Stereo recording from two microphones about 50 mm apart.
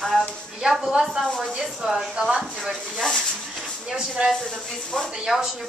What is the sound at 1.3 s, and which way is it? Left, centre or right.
Speech, centre.